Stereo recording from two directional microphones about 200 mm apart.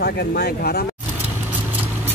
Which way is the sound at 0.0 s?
55° left (ahead or behind).